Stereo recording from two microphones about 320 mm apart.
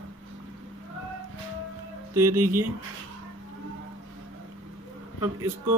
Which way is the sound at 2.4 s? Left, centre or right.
Right.